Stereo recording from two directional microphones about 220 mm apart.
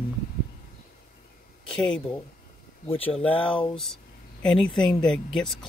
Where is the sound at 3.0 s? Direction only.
5° left (ahead or behind).